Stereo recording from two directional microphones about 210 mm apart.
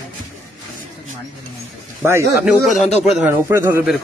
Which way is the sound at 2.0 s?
10° right (ahead or behind).